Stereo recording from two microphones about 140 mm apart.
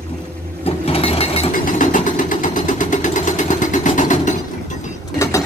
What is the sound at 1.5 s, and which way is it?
Sewing machine, 70° left (ahead or behind).